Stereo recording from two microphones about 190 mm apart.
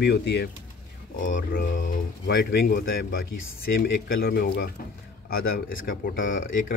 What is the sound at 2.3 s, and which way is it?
Speech, 65° left (ahead or behind).